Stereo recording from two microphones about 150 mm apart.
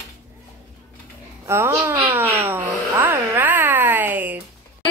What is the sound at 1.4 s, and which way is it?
Speech, 20° right (ahead or behind).